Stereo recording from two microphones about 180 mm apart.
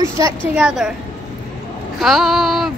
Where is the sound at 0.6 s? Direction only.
5° right (ahead or behind).